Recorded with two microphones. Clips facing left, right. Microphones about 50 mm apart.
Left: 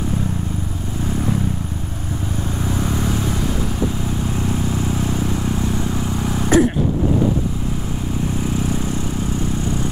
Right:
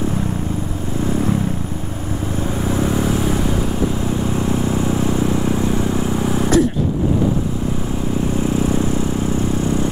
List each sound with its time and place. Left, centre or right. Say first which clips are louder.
2.7 s vehicle: right 4 dB; centre